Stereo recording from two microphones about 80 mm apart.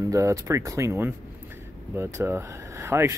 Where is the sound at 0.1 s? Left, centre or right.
Right.